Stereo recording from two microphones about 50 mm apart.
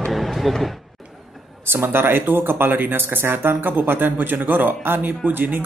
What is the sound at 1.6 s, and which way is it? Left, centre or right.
Speech, right.